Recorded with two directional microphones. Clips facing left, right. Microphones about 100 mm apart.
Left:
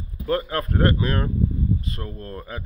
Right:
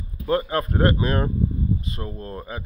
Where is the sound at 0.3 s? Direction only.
15° right (ahead or behind).